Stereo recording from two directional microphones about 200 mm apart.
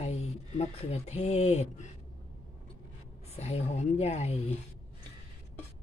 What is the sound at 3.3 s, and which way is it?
Speech, 30° left (ahead or behind).